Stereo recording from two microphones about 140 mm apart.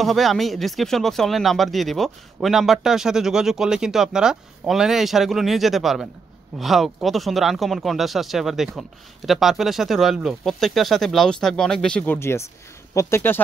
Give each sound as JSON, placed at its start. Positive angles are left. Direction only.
{"t": 0.0, "sound": "speech", "side_deg": 0}
{"t": 12.2, "sound": "speech", "side_deg": 20}